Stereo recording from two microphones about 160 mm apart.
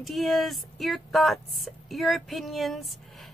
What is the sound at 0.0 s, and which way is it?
A woman's voice, centre (ahead or behind).